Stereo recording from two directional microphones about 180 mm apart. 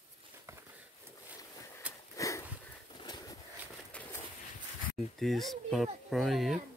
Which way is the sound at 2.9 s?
25° left (ahead or behind).